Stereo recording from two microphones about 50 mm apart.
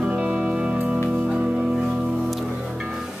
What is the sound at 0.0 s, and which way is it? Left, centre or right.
Music, centre.